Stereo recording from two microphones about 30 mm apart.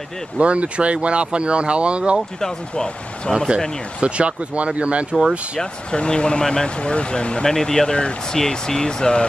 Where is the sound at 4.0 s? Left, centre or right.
Right.